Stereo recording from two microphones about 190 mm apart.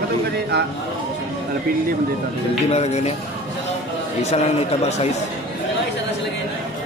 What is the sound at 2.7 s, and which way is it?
Speech, 35° left (ahead or behind).